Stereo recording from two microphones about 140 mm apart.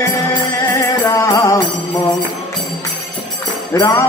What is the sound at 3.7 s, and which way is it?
Speech, 25° left (ahead or behind).